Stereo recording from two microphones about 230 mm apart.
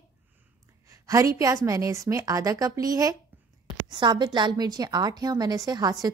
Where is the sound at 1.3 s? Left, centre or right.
Centre.